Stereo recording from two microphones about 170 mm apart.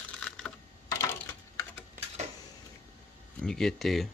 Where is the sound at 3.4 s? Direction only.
5° left (ahead or behind).